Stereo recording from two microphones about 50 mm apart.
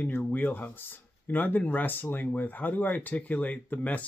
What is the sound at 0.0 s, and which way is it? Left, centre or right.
Speech, left.